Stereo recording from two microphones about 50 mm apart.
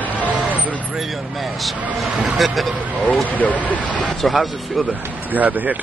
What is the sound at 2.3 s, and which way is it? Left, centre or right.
Speech, centre.